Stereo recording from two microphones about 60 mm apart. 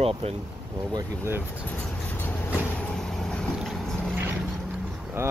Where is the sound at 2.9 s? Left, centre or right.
Centre.